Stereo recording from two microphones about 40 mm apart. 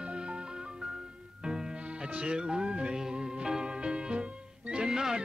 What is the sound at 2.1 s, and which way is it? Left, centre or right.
Music, right.